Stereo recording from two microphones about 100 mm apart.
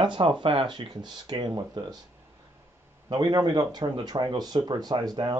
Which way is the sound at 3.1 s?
45° right (ahead or behind).